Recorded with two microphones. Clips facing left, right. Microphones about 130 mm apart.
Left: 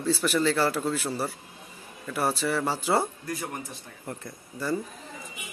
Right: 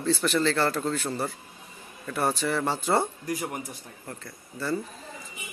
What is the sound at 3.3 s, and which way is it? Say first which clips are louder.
Speech: right 3 dB; 15° right (ahead or behind).